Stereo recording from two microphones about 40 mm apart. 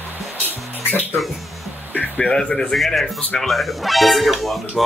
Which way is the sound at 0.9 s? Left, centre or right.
Left.